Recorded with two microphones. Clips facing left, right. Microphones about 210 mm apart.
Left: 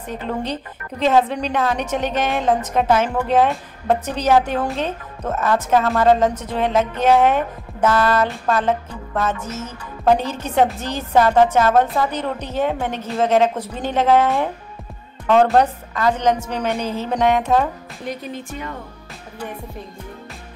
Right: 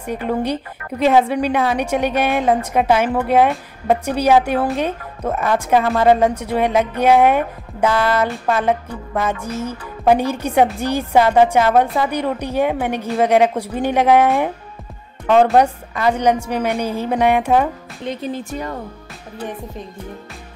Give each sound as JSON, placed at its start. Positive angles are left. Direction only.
{"t": 0.0, "sound": "a woman's voice", "side_deg": -10}
{"t": 18.0, "sound": "music", "side_deg": -30}